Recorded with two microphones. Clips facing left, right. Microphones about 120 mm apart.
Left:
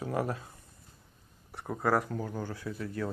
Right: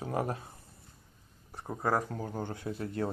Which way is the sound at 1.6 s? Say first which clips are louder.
Left 2 dB; 20° right (ahead or behind).